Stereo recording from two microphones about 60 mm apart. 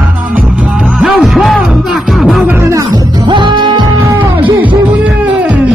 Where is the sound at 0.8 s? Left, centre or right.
Centre.